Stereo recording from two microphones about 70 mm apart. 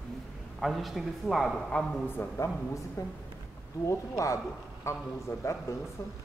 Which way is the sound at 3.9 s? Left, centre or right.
Left.